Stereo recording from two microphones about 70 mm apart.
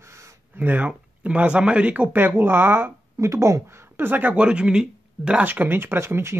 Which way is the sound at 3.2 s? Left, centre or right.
Right.